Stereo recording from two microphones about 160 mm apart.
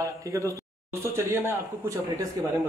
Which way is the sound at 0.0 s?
20° right (ahead or behind).